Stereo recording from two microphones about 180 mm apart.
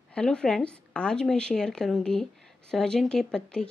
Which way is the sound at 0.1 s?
5° left (ahead or behind).